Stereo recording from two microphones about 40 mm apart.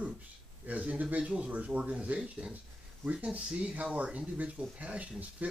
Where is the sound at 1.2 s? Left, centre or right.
Right.